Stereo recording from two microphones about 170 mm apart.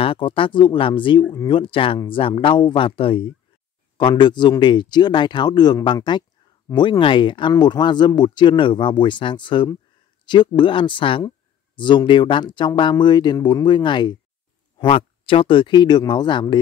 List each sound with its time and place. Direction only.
0.0 s speech: 30° left (ahead or behind)